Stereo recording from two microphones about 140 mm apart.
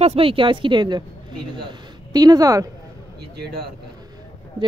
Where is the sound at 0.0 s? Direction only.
45° right (ahead or behind); by 2.7 s 25° right (ahead or behind).